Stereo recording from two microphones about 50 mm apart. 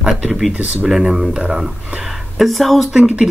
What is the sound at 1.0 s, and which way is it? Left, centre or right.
Speech, centre.